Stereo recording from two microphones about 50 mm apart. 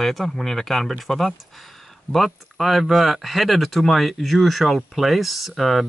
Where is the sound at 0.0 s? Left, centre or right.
Centre.